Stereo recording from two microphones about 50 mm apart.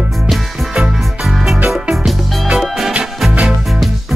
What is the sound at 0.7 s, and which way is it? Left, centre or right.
Music, centre.